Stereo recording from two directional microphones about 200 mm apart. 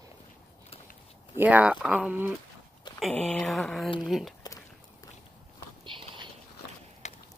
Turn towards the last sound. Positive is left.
turn(degrees=-25)  # may be behind; listen again after turning